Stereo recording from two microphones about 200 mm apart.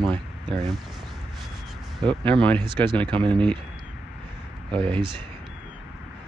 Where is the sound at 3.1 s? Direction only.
25° right (ahead or behind).